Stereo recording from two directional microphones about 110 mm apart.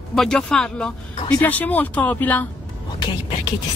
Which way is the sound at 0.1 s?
5° left (ahead or behind).